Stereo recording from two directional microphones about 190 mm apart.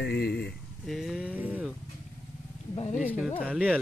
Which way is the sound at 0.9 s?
Centre (ahead or behind).